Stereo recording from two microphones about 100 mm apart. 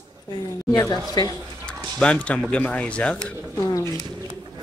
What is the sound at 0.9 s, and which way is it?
Speech, 45° left (ahead or behind).